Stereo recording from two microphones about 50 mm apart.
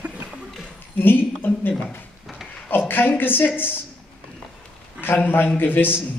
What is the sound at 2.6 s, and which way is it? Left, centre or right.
Speech, left.